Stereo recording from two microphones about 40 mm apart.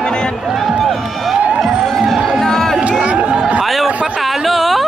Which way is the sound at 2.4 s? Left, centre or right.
Centre.